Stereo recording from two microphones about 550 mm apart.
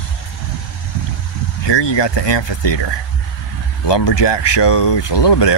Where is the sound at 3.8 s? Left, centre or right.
Left.